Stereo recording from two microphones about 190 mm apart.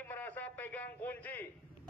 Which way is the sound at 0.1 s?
10° left (ahead or behind).